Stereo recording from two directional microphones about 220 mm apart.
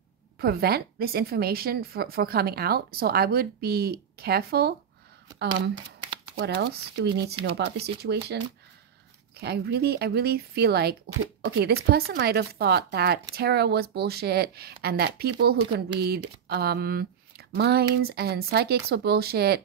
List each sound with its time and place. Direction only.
0.4 s a woman's voice: 45° right (ahead or behind)
5.5 s shuffling cards: 20° right (ahead or behind)
6.3 s a woman's voice: 50° right (ahead or behind)
9.4 s a woman's voice: 45° right (ahead or behind)